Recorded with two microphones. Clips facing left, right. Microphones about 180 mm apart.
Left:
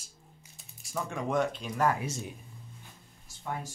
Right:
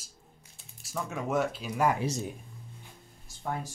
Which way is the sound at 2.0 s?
35° right (ahead or behind).